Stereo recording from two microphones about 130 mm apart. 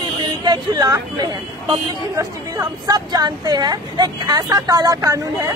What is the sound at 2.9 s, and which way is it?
Speech, 30° right (ahead or behind).